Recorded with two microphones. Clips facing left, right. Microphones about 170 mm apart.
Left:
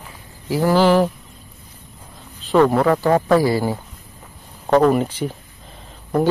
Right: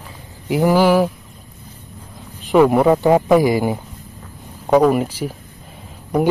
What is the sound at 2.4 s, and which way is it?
Speech, 15° right (ahead or behind).